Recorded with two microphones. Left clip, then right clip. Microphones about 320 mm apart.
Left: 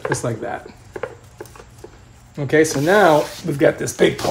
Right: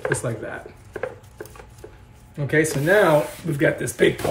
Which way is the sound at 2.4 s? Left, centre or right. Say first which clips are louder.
Left 5 dB; left.